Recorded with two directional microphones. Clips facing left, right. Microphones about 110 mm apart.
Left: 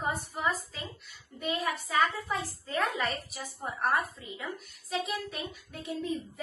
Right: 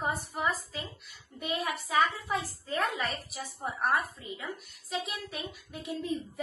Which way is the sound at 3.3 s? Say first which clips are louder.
Right 2 dB; 15° right (ahead or behind).